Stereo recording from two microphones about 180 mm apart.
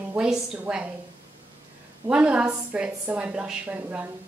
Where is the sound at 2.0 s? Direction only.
5° right (ahead or behind).